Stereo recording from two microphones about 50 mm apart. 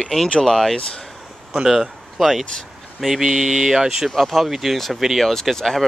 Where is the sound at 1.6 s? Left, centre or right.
Centre.